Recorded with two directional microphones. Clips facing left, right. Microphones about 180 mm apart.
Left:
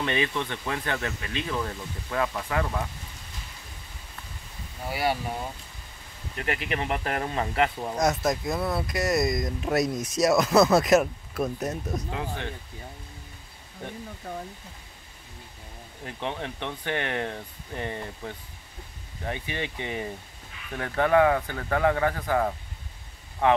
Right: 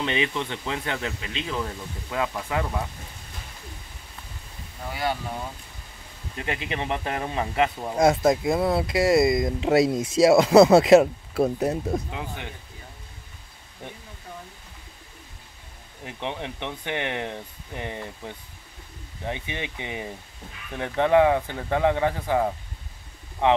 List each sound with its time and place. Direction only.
0.0 s speech: 20° right (ahead or behind)
4.8 s speech: 10° left (ahead or behind)
6.3 s speech: 20° right (ahead or behind)
8.0 s speech: 25° right (ahead or behind)
12.1 s speech: 15° right (ahead or behind)
14.3 s speech: 55° left (ahead or behind)
16.0 s speech: 15° right (ahead or behind)
23.4 s speech: 15° right (ahead or behind)